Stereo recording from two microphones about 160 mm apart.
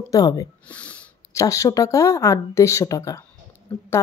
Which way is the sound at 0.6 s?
10° left (ahead or behind).